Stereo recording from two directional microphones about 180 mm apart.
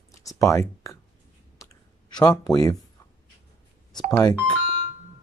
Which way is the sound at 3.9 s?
20° left (ahead or behind).